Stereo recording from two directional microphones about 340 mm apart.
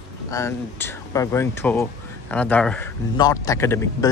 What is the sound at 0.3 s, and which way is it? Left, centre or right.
Speech, centre.